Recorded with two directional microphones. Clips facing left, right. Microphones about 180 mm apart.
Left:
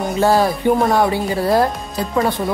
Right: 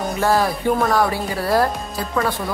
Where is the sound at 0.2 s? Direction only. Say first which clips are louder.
Left 4 dB; 20° left (ahead or behind).